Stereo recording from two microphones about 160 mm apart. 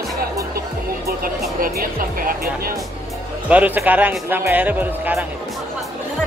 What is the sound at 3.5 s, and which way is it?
Speech, 10° right (ahead or behind).